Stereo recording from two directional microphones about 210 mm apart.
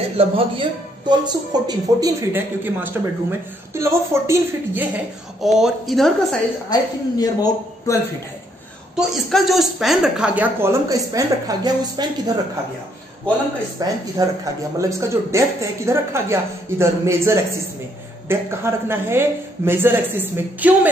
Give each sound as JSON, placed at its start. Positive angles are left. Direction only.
{"t": 0.2, "sound": "speech", "side_deg": -25}
{"t": 6.7, "sound": "a man's voice", "side_deg": 20}
{"t": 9.1, "sound": "speech", "side_deg": 0}
{"t": 13.7, "sound": "speech", "side_deg": -15}